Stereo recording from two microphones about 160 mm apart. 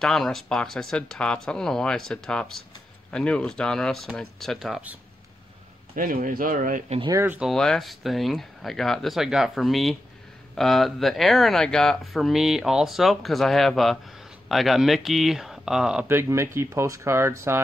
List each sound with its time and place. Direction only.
0.0 s speech: 5° left (ahead or behind)
5.9 s speech: 60° right (ahead or behind)
7.0 s speech: 20° right (ahead or behind)
7.3 s speech: centre (ahead or behind); by 17.6 s 15° right (ahead or behind)